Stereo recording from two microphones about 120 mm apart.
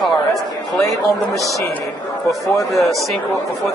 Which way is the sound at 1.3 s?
25° right (ahead or behind).